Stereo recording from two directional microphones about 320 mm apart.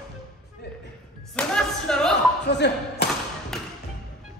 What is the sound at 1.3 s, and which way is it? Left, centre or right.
Clapping, centre.